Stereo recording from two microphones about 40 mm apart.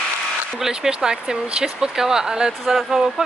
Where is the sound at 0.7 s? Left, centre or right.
Centre.